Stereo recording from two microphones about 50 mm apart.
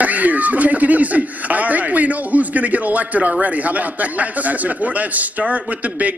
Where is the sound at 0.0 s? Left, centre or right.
Right.